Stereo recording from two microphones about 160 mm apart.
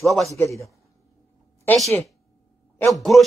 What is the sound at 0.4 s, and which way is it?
Speech, 20° left (ahead or behind).